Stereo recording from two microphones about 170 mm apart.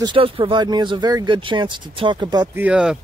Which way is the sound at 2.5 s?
10° right (ahead or behind).